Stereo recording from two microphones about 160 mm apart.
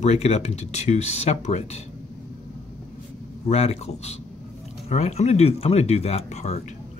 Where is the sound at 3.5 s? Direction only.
40° left (ahead or behind).